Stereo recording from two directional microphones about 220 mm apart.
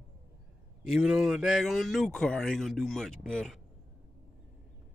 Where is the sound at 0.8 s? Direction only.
Centre (ahead or behind).